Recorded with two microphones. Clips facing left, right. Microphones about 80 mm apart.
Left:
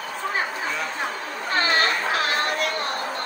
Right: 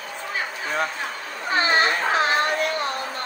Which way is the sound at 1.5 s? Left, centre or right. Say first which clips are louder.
Right 2 dB; centre.